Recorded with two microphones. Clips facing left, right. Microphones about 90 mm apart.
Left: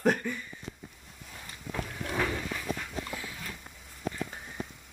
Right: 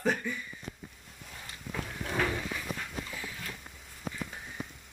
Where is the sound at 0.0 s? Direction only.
50° left (ahead or behind).